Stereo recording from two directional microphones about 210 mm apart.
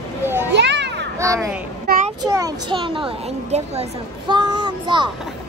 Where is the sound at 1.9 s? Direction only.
50° right (ahead or behind).